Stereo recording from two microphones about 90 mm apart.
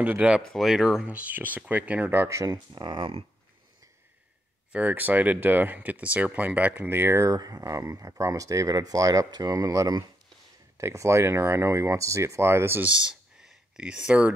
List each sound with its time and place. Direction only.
0.0 s speech: 15° right (ahead or behind)
0.4 s speech: centre (ahead or behind)
1.0 s speech: 15° right (ahead or behind)
2.2 s speech: 35° right (ahead or behind)
2.5 s speech: 55° right (ahead or behind); by 3.3 s 75° right (ahead or behind)
4.7 s speech: 20° right (ahead or behind)
7.3 s speech: 40° right (ahead or behind); by 12.9 s 25° right (ahead or behind)
12.9 s a sound: 10° right (ahead or behind)